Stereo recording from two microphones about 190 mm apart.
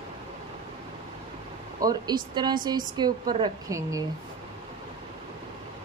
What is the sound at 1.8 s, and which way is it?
Speech, 20° right (ahead or behind).